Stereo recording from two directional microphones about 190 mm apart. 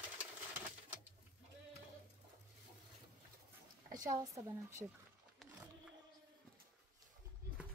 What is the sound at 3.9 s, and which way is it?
A woman's voice, 20° right (ahead or behind).